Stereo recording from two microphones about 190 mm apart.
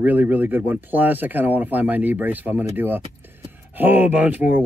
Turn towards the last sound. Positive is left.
turn(degrees=-10)  # may be behind; listen again after turning